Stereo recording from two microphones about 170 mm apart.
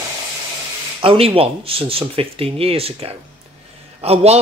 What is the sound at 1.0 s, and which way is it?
A man's voice, 35° right (ahead or behind).